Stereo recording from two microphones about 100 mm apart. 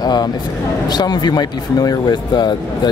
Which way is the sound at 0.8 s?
45° left (ahead or behind).